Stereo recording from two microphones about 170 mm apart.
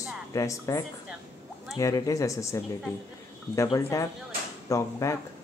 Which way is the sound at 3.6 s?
15° left (ahead or behind).